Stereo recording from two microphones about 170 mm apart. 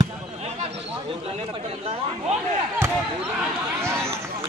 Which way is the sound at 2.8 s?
5° right (ahead or behind).